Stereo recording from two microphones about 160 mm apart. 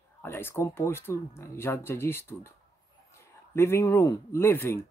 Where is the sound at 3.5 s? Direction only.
15° left (ahead or behind).